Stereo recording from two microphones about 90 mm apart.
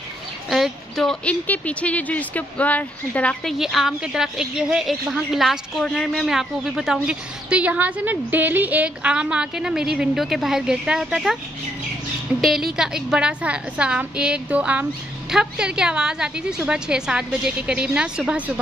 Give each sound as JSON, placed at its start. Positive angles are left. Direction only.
{"t": 0.5, "sound": "a sound", "side_deg": 0}
{"t": 1.2, "sound": "speech", "side_deg": 15}
{"t": 3.4, "sound": "a woman's voice", "side_deg": 0}
{"t": 12.4, "sound": "a woman's voice", "side_deg": 0}